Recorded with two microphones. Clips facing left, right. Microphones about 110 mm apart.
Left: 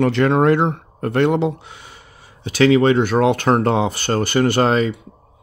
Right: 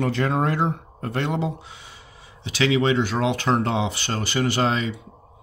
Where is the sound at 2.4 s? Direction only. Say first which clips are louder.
Left 7 dB; 50° left (ahead or behind).